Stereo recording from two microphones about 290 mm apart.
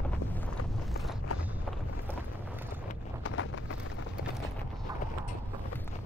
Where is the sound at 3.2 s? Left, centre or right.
Left.